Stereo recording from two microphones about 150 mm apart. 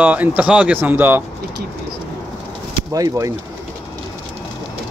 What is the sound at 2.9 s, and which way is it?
Speech, 25° right (ahead or behind).